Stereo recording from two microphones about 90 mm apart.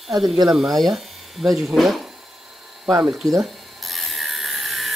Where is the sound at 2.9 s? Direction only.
40° right (ahead or behind).